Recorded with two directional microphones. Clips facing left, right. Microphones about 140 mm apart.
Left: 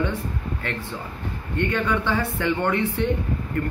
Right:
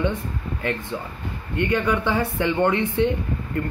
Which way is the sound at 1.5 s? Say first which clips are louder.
Right 2 dB; 10° right (ahead or behind).